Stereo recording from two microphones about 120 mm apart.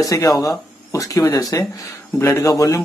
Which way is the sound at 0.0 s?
30° left (ahead or behind).